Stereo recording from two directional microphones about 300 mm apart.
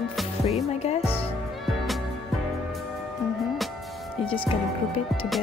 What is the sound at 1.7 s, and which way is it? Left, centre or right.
Music, centre.